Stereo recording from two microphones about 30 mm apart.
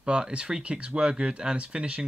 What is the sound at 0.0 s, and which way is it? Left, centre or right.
Speech, right.